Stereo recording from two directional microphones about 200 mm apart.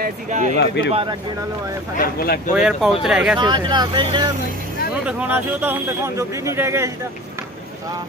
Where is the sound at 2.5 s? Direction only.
5° right (ahead or behind).